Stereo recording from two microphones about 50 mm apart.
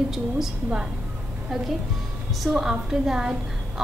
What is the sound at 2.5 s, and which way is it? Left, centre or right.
Speech, centre.